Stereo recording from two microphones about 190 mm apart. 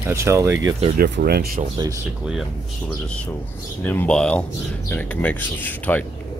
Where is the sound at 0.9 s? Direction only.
60° right (ahead or behind).